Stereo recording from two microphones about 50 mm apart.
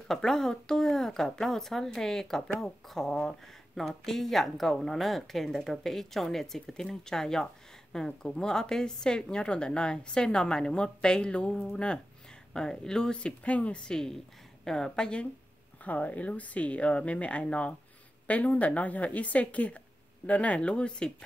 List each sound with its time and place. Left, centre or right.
0.1 s speech: centre; by 13.9 s left
13.9 s speech: centre
15.8 s speech: left